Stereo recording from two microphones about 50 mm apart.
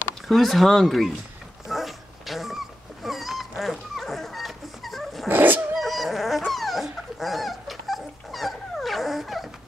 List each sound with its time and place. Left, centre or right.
0.3 s speech: centre
1.7 s dog: centre
5.3 s dog: right
5.8 s dog: centre